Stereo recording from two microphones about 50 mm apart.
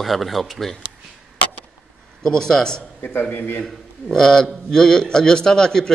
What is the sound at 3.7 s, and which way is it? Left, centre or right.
Speech, centre.